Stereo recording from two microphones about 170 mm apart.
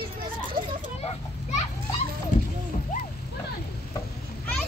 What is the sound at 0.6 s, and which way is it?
Vehicle, 30° right (ahead or behind).